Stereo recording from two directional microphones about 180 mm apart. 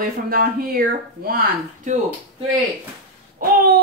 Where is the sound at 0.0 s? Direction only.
55° right (ahead or behind).